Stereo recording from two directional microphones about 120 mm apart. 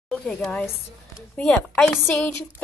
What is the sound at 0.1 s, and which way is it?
A woman's voice, 5° left (ahead or behind).